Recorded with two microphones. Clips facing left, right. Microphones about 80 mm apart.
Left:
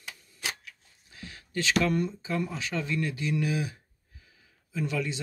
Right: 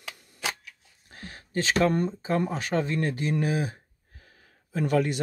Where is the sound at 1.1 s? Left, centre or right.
Right.